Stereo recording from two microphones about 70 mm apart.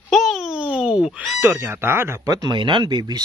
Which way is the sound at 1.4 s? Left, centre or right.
Right.